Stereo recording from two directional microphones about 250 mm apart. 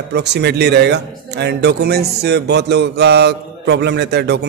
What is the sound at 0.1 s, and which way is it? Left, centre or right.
Speech, right.